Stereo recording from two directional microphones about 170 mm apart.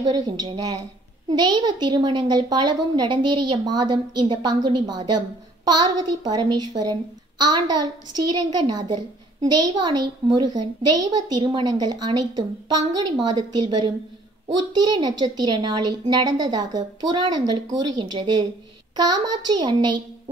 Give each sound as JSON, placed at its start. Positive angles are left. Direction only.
{"t": 0.0, "sound": "a child's voice", "side_deg": -25}